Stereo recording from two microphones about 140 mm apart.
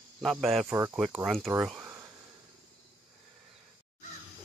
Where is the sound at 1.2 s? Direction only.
Centre (ahead or behind).